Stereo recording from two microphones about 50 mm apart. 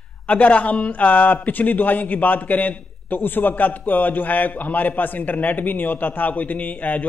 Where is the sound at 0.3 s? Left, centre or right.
Left.